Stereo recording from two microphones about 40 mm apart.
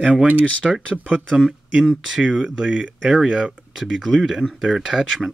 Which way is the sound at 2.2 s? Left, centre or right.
Right.